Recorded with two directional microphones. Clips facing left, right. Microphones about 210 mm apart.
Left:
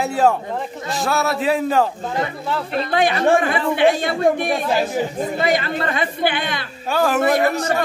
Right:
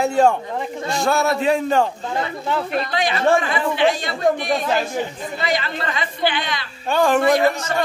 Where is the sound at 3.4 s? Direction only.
55° left (ahead or behind).